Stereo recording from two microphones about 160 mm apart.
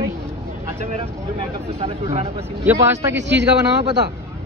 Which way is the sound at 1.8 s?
40° right (ahead or behind).